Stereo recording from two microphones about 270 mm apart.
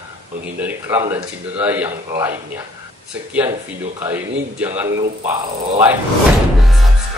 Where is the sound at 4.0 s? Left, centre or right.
Centre.